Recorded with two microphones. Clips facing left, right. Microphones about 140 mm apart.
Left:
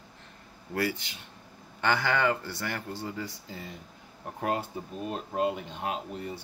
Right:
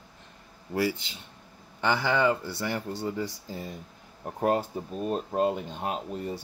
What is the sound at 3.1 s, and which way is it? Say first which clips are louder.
Speech: right 5 dB; 35° right (ahead or behind).